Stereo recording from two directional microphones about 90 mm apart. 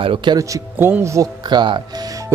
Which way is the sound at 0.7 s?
25° right (ahead or behind).